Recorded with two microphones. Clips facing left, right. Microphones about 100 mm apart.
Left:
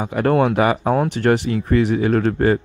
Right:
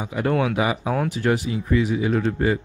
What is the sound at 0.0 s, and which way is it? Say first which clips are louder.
Speech: left 5 dB; 55° left (ahead or behind).